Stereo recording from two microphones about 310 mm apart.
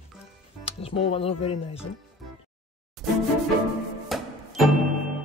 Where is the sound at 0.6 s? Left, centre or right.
Centre.